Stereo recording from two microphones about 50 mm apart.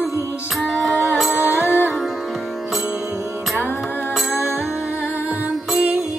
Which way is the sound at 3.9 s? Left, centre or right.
Left.